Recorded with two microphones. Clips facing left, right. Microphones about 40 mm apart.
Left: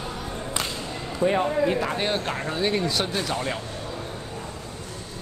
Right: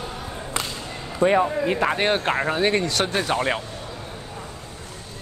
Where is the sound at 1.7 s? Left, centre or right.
Right.